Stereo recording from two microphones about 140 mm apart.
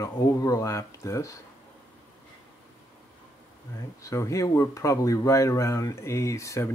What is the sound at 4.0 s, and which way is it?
Speech, 20° left (ahead or behind).